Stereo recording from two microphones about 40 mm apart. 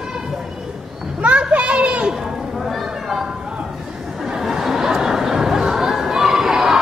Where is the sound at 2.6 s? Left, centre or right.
Centre.